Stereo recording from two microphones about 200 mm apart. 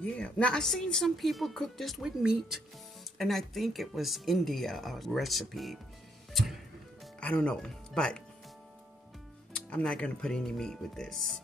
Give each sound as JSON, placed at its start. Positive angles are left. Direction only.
{"t": 0.0, "sound": "a woman's voice", "side_deg": 5}
{"t": 6.3, "sound": "music", "side_deg": 0}
{"t": 7.2, "sound": "speech", "side_deg": 5}
{"t": 9.7, "sound": "a woman's voice", "side_deg": 5}